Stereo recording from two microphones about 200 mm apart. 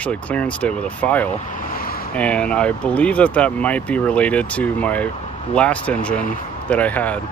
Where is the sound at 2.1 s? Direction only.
5° left (ahead or behind).